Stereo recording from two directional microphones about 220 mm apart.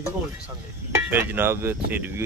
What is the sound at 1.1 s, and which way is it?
Speech, 10° right (ahead or behind).